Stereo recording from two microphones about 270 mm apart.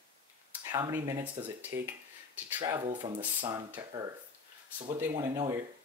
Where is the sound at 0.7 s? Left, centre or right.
Centre.